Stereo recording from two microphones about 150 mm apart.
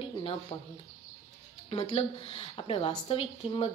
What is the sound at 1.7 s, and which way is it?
Speech, 40° left (ahead or behind).